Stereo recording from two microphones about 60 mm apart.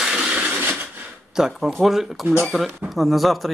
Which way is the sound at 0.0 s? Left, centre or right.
Centre.